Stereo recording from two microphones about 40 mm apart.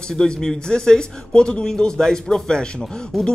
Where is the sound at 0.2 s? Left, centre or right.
Centre.